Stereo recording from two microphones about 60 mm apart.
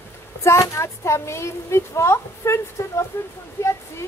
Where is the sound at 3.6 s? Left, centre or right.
Left.